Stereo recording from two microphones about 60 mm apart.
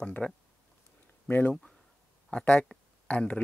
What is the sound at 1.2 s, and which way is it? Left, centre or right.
Speech, left.